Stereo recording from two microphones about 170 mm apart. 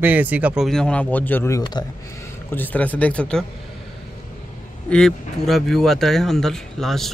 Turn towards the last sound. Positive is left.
turn(degrees=0)  # may be behind; listen again after turning